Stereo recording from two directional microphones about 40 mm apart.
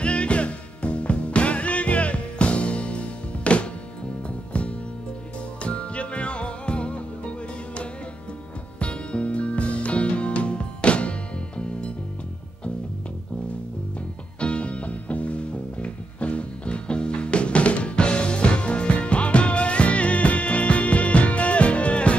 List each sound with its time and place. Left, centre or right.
0.0 s music: left
14.4 s music: left